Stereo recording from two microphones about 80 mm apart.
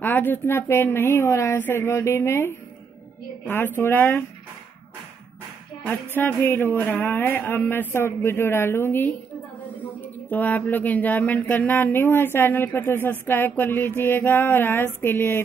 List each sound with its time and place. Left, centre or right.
0.0 s speech: left
5.9 s speech: left